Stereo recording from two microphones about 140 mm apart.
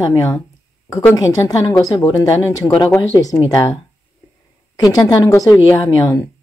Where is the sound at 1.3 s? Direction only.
25° left (ahead or behind).